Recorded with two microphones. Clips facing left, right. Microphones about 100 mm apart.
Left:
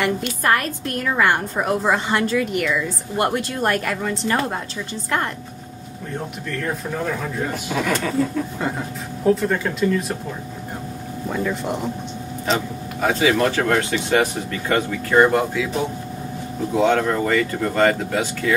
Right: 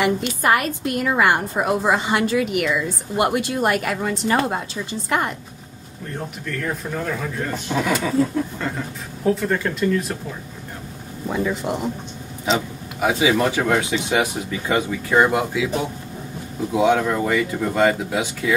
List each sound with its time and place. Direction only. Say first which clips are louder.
0.0 s a woman's voice: right 1 dB; 10° right (ahead or behind); by 7.8 s 10° left (ahead or behind)
7.8 s a man's voice: right 1 dB; 5° right (ahead or behind)
8.5 s speech: left 2 dB; 15° left (ahead or behind)
9.2 s a man's voice: left 2 dB; centre (ahead or behind)
11.2 s a man's voice: right 1 dB; 5° right (ahead or behind)
16.7 s a woman's voice: even; 10° right (ahead or behind)